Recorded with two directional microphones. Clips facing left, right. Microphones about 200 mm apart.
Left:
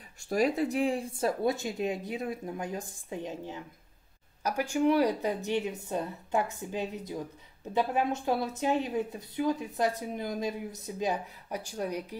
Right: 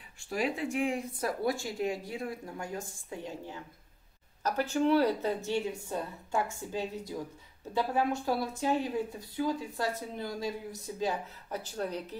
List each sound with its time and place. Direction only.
0.2 s a woman's voice: 40° left (ahead or behind); by 12.2 s 10° left (ahead or behind)